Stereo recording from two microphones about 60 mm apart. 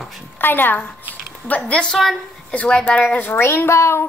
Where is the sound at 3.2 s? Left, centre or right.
Left.